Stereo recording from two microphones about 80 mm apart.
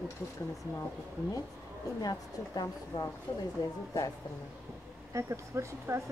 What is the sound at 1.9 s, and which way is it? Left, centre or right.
A woman's voice, left.